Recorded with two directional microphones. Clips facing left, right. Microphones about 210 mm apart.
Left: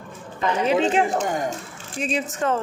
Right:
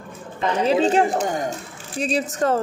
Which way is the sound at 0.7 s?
35° right (ahead or behind).